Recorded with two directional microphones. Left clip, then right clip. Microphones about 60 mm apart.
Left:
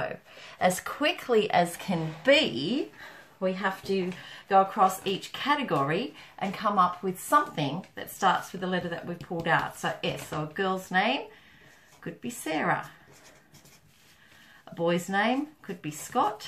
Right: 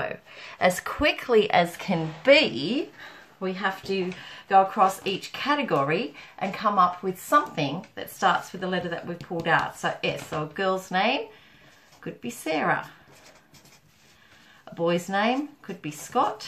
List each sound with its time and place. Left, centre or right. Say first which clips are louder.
0.0 s speech: right 2 dB; right
3.3 s speech: right 1 dB; centre
3.8 s speech: right 1 dB; right
4.8 s speech: right 2 dB; right
10.9 s speech: right 2 dB; right
14.6 s speech: right 2 dB; right